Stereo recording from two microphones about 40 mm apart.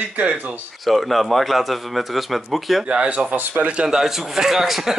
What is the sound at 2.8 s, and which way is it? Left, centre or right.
Speech, right.